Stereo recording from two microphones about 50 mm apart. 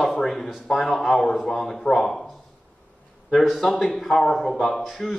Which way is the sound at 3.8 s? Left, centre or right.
Centre.